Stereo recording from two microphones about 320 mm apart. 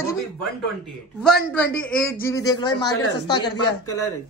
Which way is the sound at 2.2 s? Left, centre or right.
Centre.